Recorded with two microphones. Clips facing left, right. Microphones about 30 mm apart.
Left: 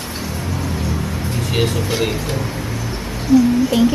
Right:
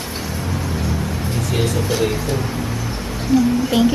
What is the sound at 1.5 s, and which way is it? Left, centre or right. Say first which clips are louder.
Vehicle: left 1 dB; left.